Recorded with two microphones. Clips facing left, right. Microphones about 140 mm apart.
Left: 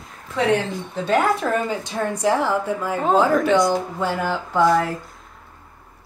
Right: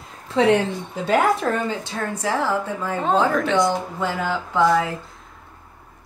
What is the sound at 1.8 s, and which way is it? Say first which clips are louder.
A woman's voice: left 4 dB; 15° left (ahead or behind).